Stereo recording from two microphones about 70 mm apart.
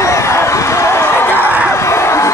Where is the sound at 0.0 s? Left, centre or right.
Left.